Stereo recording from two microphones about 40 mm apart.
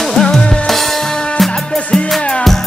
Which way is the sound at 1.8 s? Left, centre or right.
Left.